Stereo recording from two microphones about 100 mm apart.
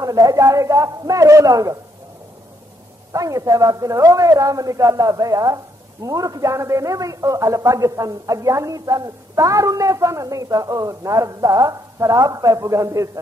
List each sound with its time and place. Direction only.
0.0 s speech: 35° right (ahead or behind)
3.1 s speech: 35° right (ahead or behind)